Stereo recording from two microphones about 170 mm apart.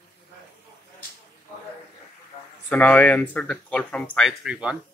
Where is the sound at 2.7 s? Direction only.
10° left (ahead or behind).